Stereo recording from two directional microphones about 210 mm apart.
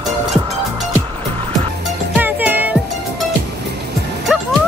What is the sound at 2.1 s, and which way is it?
Music, 10° right (ahead or behind).